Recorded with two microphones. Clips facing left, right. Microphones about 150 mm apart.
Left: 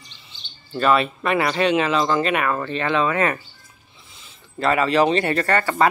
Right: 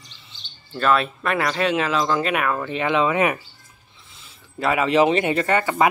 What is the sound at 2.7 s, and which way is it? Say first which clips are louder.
Speech: right 3 dB; 15° right (ahead or behind).